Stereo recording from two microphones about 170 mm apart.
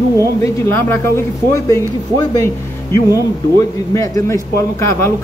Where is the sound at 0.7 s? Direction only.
15° left (ahead or behind).